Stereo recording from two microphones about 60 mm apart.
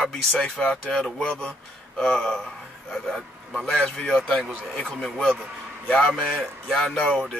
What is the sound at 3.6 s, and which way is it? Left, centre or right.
Speech, centre.